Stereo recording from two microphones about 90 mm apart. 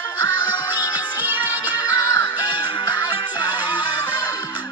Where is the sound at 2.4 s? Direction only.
50° left (ahead or behind).